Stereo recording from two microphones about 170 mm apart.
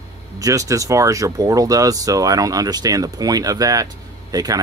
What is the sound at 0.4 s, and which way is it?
Speech, 20° right (ahead or behind).